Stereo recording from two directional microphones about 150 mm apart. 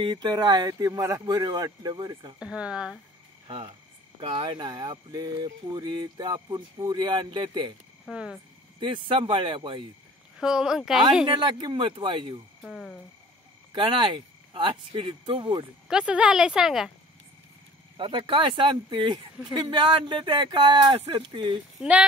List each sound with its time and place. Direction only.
0.0 s speech: 25° right (ahead or behind)
2.3 s a woman's voice: 5° right (ahead or behind)
3.4 s cricket: 35° right (ahead or behind)
4.2 s speech: 35° right (ahead or behind)
8.1 s speech: 5° right (ahead or behind)
8.7 s speech: 35° right (ahead or behind)
10.3 s a woman's voice: 5° right (ahead or behind)
11.2 s speech: 30° right (ahead or behind)
12.6 s a woman's voice: centre (ahead or behind)
13.7 s speech: 35° right (ahead or behind)
15.9 s a woman's voice: 5° right (ahead or behind)
17.9 s speech: 35° right (ahead or behind)
21.7 s speech: 5° right (ahead or behind)